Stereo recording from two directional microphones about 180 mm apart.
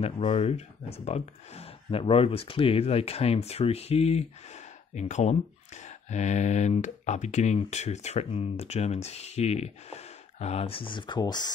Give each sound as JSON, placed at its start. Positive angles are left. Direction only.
{"t": 0.0, "sound": "speech", "side_deg": 30}